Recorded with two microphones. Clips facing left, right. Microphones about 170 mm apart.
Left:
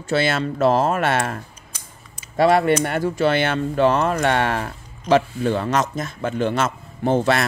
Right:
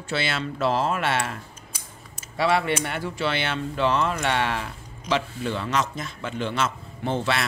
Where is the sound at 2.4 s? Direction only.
50° left (ahead or behind).